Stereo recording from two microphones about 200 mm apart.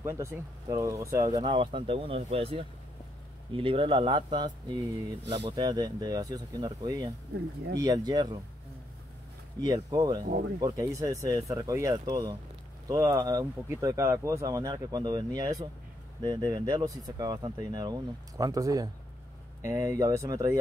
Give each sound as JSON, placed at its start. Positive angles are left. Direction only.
{"t": 0.0, "sound": "speech", "side_deg": -15}
{"t": 9.7, "sound": "speech", "side_deg": -20}